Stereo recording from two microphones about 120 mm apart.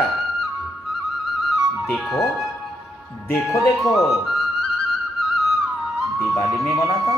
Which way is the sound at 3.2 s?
25° left (ahead or behind).